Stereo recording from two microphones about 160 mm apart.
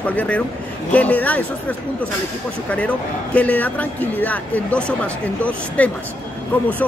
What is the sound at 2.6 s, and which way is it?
Speech, 10° left (ahead or behind).